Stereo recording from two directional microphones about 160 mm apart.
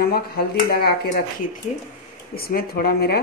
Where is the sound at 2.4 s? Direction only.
70° left (ahead or behind).